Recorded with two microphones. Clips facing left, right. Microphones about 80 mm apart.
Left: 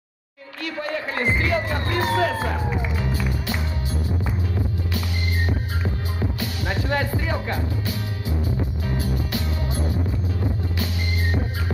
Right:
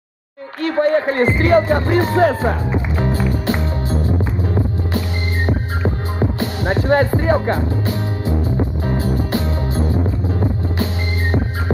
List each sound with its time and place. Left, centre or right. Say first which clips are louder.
0.6 s speech: right 12 dB; right
3.4 s music: right 8 dB; right
5.5 s music: right 7 dB; right